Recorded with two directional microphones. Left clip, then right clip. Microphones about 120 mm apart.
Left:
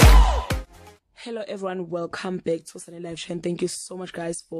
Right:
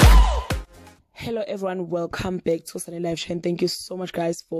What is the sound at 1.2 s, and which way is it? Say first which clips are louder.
Speech: right 4 dB; 35° right (ahead or behind).